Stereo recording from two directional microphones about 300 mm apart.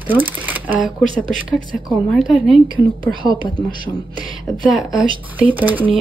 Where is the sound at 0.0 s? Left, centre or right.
Centre.